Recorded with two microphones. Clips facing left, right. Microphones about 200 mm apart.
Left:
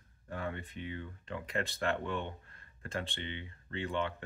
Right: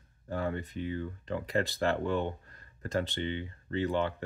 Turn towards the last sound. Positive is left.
turn(degrees=-35)  # may be behind; listen again after turning